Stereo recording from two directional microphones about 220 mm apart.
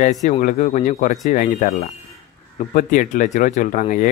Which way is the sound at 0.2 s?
35° left (ahead or behind).